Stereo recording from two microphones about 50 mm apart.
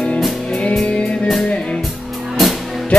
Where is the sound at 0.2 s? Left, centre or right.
Centre.